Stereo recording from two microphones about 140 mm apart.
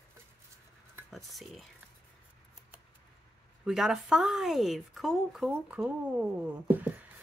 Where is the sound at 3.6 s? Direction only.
5° right (ahead or behind).